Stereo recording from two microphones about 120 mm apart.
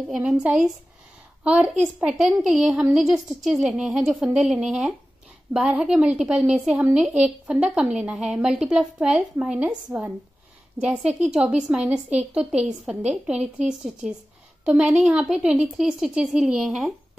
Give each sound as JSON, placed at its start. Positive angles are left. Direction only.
{"t": 0.1, "sound": "a woman's voice", "side_deg": -5}